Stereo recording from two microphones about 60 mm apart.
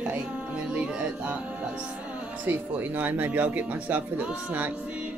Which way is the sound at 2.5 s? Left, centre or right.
Right.